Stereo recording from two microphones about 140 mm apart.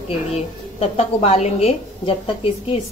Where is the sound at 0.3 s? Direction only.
50° left (ahead or behind).